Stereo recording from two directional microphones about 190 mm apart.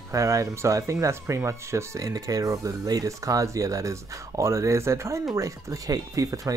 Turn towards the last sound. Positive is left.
turn(degrees=-20)  # may be behind; listen again after turning